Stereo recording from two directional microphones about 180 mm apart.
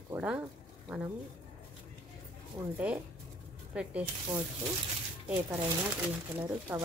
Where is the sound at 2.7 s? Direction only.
5° right (ahead or behind).